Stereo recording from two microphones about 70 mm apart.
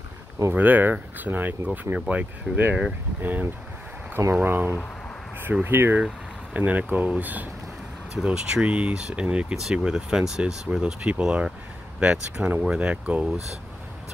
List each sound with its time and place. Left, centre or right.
0.5 s speech: right
8.2 s speech: centre